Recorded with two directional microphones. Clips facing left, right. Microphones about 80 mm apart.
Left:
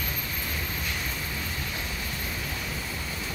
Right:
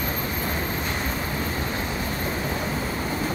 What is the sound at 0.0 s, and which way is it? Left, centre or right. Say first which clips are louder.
Vehicle: right 7 dB; right.